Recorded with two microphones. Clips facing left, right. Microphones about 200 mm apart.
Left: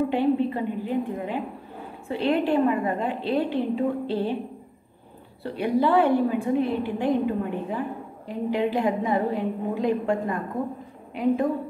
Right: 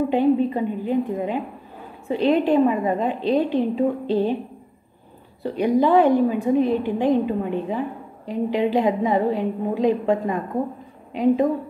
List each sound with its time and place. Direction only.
0.1 s a woman's voice: 15° right (ahead or behind)
5.4 s a woman's voice: 15° right (ahead or behind)